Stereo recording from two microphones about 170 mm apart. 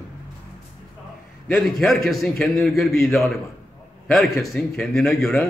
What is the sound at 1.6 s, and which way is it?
A man's voice, centre (ahead or behind).